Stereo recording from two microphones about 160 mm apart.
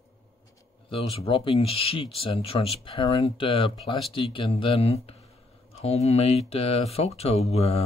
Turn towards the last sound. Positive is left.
turn(degrees=40)  # may be behind; listen again after turning